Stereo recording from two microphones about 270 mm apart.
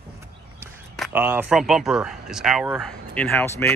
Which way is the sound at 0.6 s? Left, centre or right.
Centre.